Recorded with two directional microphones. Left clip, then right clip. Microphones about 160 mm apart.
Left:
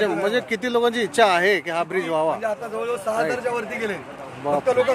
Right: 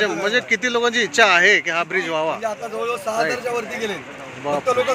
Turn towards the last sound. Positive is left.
turn(degrees=10)  # may be behind; listen again after turning